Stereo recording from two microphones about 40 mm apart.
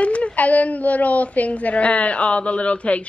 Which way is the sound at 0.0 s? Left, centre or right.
Left.